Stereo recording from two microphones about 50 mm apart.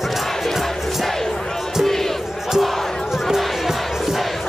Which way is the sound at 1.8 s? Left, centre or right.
Centre.